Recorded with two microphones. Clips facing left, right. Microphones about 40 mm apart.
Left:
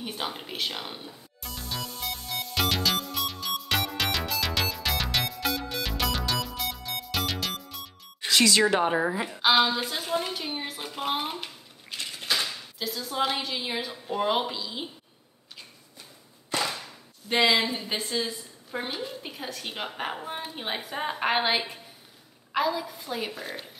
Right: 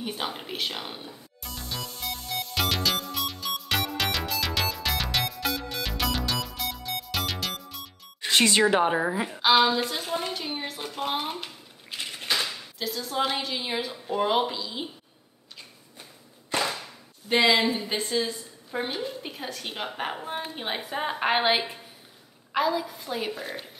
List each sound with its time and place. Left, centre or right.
0.0 s music: centre
8.3 s speech: right
8.6 s a woman's voice: centre
16.7 s a sound: centre
17.7 s a woman's voice: centre